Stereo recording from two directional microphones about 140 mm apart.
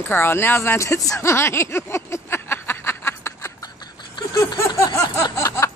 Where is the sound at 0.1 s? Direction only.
15° left (ahead or behind).